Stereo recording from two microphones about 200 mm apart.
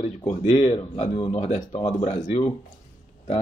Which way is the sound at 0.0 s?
30° left (ahead or behind).